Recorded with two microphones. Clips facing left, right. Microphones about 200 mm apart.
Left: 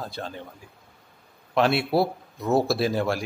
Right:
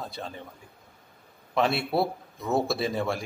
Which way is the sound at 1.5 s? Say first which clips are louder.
Left 4 dB; centre (ahead or behind).